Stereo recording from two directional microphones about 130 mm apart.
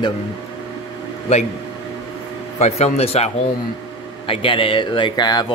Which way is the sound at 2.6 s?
55° left (ahead or behind).